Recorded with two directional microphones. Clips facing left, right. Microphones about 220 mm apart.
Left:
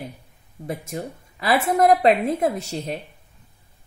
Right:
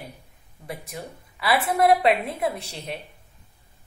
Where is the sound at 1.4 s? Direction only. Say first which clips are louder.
Left 2 dB; 40° left (ahead or behind).